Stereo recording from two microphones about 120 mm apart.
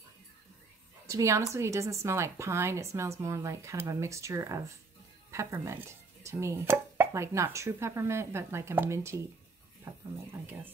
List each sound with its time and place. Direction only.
1.0 s speech: 25° right (ahead or behind)